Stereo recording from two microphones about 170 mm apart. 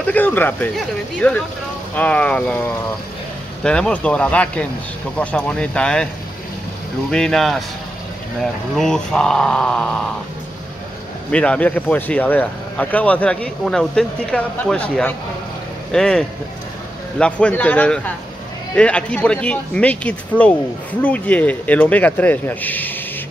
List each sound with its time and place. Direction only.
0.0 s speech: 10° left (ahead or behind)
7.1 s speech: 5° left (ahead or behind)
11.3 s speech: 5° left (ahead or behind)